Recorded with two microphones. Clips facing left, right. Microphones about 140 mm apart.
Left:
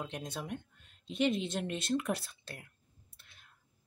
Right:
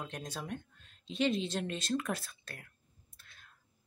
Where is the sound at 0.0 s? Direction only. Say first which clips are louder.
Left 1 dB; 10° left (ahead or behind).